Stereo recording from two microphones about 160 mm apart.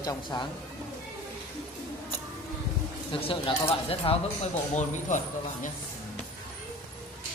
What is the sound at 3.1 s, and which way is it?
Speech, 30° left (ahead or behind).